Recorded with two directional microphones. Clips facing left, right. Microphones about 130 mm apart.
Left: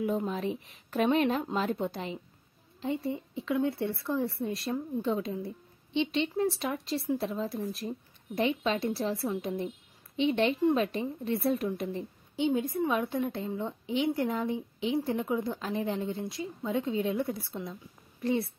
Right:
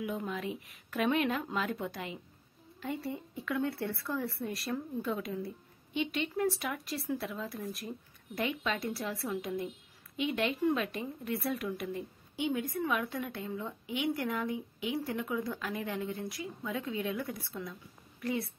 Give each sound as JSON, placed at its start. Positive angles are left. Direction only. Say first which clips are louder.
{"t": 0.2, "sound": "a woman's voice", "louder": "left 5 dB", "side_deg": 30}